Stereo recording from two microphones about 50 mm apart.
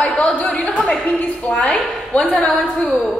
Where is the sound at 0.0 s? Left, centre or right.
Left.